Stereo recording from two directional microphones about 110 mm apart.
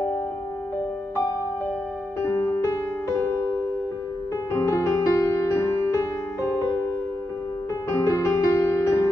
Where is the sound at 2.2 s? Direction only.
25° left (ahead or behind).